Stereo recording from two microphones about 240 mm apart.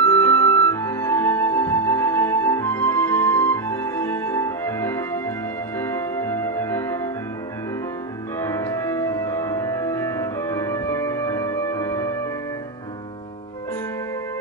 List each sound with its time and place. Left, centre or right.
0.0 s music: centre
8.4 s music: centre